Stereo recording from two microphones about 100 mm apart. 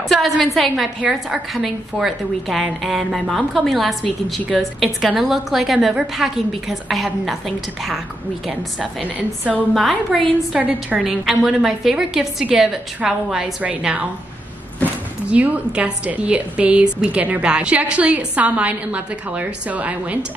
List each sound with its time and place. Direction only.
0.1 s a woman's voice: centre (ahead or behind)
9.0 s a woman's voice: 15° right (ahead or behind)
9.8 s a woman's voice: centre (ahead or behind)
15.2 s a woman's voice: 15° right (ahead or behind)